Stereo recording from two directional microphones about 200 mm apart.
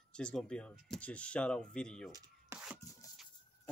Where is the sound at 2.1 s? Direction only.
20° right (ahead or behind).